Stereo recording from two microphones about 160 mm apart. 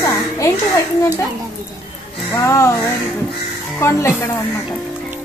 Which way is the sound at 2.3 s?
15° left (ahead or behind).